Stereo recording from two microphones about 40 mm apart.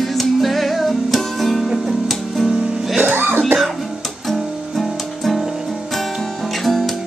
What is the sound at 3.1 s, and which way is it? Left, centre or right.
Music, right.